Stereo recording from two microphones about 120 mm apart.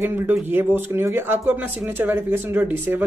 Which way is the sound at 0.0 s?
20° right (ahead or behind).